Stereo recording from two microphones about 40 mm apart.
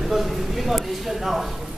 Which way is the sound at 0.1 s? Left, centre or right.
Centre.